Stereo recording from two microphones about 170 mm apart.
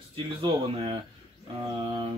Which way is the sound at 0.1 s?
30° right (ahead or behind).